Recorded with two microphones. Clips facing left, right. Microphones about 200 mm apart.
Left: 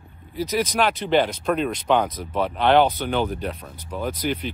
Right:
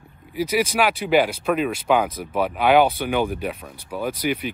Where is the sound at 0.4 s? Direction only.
10° right (ahead or behind).